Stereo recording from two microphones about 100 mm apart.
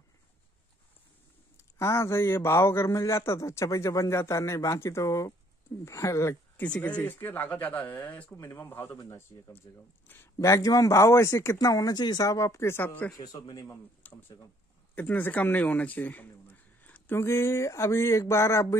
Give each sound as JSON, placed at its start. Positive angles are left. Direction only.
{"t": 1.8, "sound": "speech", "side_deg": 30}
{"t": 6.6, "sound": "speech", "side_deg": 15}
{"t": 8.4, "sound": "speech", "side_deg": 25}
{"t": 13.2, "sound": "a man's voice", "side_deg": 40}
{"t": 14.0, "sound": "speech", "side_deg": 15}